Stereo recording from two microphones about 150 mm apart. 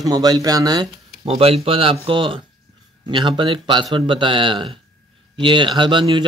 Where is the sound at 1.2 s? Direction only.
40° right (ahead or behind).